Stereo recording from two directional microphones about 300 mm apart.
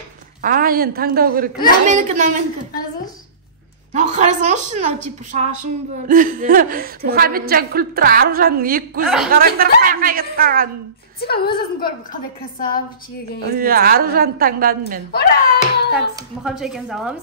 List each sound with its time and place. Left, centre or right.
0.4 s a woman's voice: right
3.9 s a woman's voice: right
9.0 s speech: centre
9.3 s a woman's voice: right
11.1 s a woman's voice: left
13.4 s a woman's voice: right
15.1 s speech: left
16.4 s speech: centre